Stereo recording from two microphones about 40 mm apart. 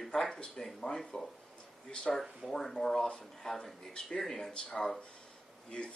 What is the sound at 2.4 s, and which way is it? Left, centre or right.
A man's voice, centre.